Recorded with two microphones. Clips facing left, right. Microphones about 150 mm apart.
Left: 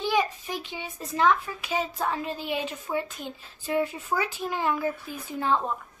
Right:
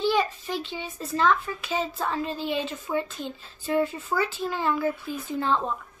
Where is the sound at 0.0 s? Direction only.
15° left (ahead or behind).